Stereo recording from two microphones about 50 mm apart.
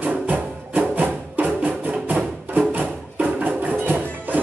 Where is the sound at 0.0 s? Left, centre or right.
Right.